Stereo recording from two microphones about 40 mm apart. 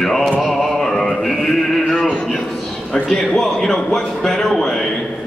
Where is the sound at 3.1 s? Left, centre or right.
Centre.